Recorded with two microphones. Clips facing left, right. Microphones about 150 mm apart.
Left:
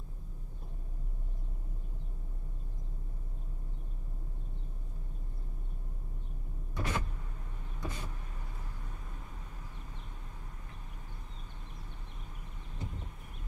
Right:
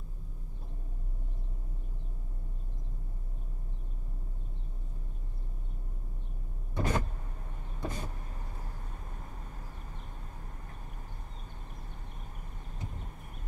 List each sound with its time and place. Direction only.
6.8 s power windows: 45° right (ahead or behind)
7.8 s vehicle: 45° right (ahead or behind)